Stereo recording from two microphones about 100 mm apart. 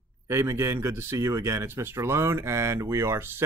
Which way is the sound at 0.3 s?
25° right (ahead or behind).